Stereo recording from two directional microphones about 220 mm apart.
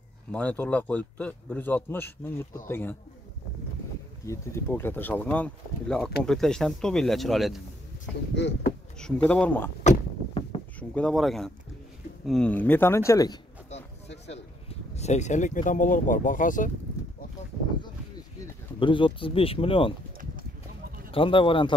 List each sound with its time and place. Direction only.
0.3 s a man's voice: 5° left (ahead or behind)
4.3 s a man's voice: 10° left (ahead or behind)
8.4 s speech: 50° left (ahead or behind)
9.0 s speech: 5° left (ahead or behind)
9.8 s a sound: 25° left (ahead or behind)
10.8 s a man's voice: 5° left (ahead or behind)
13.7 s a sound: 50° left (ahead or behind)
14.2 s speech: 30° left (ahead or behind)
18.8 s speech: 20° left (ahead or behind)
21.1 s speech: 25° left (ahead or behind)